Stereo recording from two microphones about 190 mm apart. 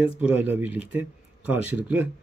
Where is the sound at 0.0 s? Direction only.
5° right (ahead or behind).